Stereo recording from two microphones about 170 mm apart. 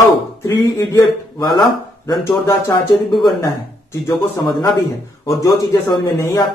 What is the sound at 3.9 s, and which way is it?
A man's voice, 20° left (ahead or behind).